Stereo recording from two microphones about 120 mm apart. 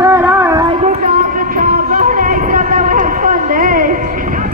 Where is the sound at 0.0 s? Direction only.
20° right (ahead or behind).